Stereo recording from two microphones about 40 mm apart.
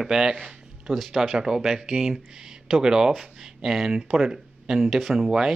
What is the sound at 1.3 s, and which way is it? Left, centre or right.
Speech, centre.